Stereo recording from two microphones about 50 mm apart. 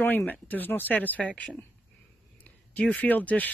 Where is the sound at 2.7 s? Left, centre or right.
Left.